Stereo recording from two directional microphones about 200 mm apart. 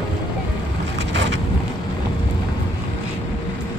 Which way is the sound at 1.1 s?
60° right (ahead or behind).